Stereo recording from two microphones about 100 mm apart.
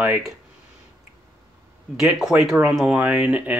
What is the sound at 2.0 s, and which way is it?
Speech, centre (ahead or behind).